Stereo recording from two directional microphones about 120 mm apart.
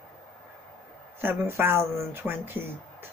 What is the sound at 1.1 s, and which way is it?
Speech, 20° right (ahead or behind).